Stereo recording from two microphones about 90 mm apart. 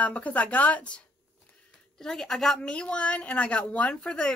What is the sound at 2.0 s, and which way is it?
A woman's voice, 5° left (ahead or behind).